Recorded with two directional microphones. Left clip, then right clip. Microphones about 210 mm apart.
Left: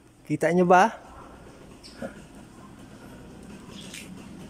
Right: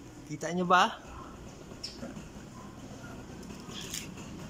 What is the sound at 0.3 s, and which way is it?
Speech, 35° left (ahead or behind).